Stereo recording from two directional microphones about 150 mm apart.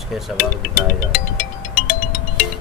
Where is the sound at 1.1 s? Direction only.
65° left (ahead or behind).